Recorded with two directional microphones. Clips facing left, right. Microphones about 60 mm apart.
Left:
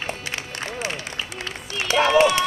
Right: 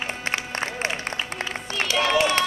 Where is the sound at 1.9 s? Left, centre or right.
Left.